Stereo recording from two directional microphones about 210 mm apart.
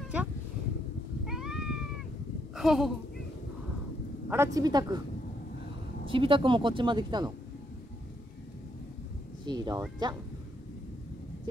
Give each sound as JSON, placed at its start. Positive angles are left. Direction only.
{"t": 1.2, "sound": "cat", "side_deg": 0}
{"t": 2.5, "sound": "a sound", "side_deg": 0}
{"t": 4.3, "sound": "a woman's voice", "side_deg": -15}
{"t": 6.0, "sound": "a woman's voice", "side_deg": -25}
{"t": 9.5, "sound": "a woman's voice", "side_deg": -20}